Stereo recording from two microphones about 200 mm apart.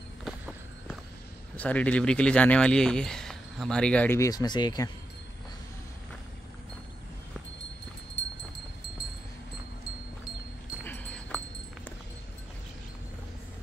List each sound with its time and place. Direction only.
1.6 s speech: 5° left (ahead or behind)
8.2 s a sound: 60° left (ahead or behind)
10.8 s dog: 5° left (ahead or behind)